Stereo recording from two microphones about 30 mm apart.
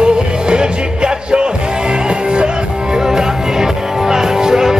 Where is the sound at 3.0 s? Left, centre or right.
Centre.